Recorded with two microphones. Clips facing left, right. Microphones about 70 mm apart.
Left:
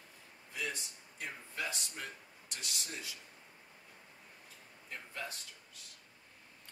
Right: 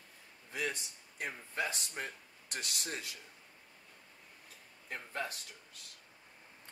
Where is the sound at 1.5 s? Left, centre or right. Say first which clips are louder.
Right 4 dB; right.